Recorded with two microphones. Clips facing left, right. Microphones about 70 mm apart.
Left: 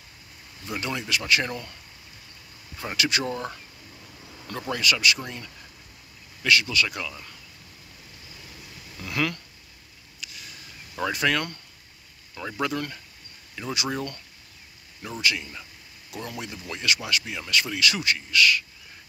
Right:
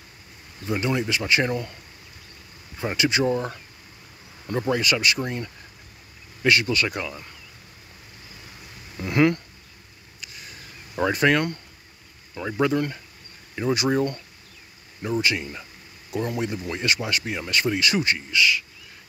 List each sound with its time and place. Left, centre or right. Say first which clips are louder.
0.7 s speech: right 5 dB; right
2.8 s speech: right 5 dB; right
7.0 s speech: right 3 dB; right
8.9 s speech: right 8 dB; right
10.3 s a sound: right 2 dB; right
11.1 s speech: right 5 dB; right
15.2 s speech: right 2 dB; right